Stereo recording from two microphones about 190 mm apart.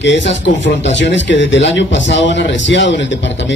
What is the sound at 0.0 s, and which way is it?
Speech, 70° left (ahead or behind).